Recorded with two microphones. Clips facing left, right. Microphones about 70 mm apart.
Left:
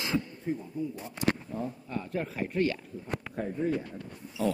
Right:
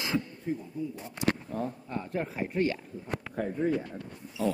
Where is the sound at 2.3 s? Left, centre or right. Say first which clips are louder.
Left 1 dB; centre.